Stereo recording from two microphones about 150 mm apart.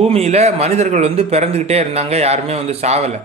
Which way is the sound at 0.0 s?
45° right (ahead or behind).